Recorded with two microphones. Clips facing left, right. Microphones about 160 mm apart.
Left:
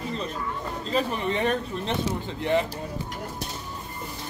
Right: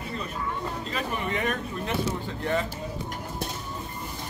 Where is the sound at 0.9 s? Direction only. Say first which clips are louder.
Left 6 dB; 30° left (ahead or behind).